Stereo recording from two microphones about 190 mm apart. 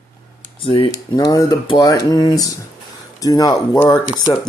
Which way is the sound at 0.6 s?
25° left (ahead or behind).